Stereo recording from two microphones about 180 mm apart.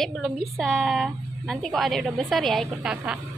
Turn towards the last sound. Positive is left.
turn(degrees=0)  # may be behind; listen again after turning